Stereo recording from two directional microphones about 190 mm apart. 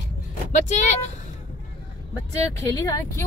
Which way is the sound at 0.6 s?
40° left (ahead or behind).